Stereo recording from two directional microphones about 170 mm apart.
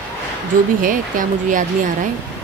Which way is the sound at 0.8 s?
50° right (ahead or behind).